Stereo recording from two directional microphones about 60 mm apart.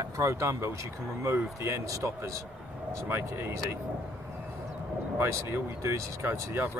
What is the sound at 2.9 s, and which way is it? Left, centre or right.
Speech, right.